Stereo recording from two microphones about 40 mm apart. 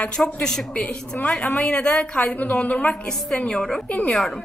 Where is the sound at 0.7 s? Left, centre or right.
Left.